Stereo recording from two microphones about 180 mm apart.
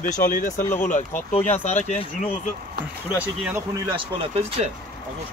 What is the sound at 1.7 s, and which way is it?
Speech, 40° left (ahead or behind).